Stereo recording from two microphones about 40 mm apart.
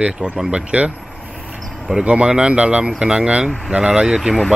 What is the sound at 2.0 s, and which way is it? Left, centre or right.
Speech, right.